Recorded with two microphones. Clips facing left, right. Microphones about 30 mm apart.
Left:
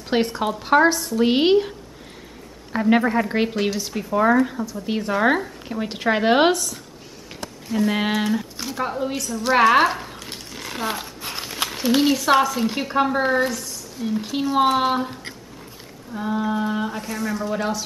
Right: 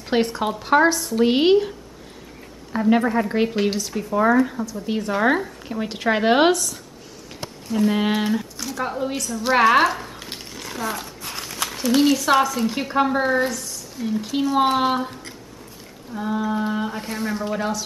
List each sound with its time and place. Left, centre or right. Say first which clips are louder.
0.1 s a woman's voice: even; centre
2.7 s a woman's voice: even; centre
7.7 s a woman's voice: right 1 dB; centre
8.1 s speech: even; centre
8.5 s a sound: left 1 dB; left
8.8 s speech: even; centre
10.5 s a sound: left 1 dB; centre
12.8 s speech: even; centre
13.5 s a sound: left 1 dB; centre
14.1 s a woman's voice: even; centre
17.0 s a man's voice: even; right
17.6 s speech: even; centre